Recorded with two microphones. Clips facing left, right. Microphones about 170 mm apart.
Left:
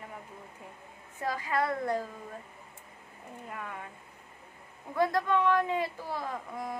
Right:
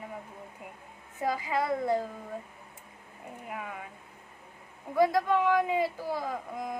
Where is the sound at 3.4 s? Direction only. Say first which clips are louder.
Right 2 dB; 5° right (ahead or behind).